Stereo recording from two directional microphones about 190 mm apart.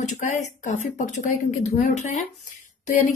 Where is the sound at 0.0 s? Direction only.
40° left (ahead or behind).